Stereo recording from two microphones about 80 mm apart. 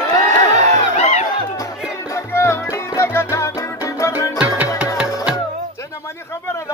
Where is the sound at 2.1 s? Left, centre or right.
Left.